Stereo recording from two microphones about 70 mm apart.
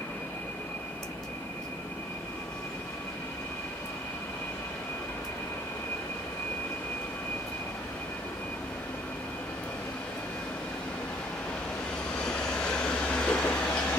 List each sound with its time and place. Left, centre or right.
12.3 s train: centre